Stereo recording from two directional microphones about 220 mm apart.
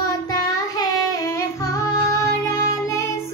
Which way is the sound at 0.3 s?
15° left (ahead or behind).